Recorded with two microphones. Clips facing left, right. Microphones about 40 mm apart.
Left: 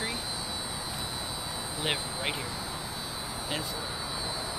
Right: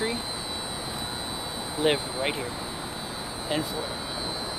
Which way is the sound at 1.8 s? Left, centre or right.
Centre.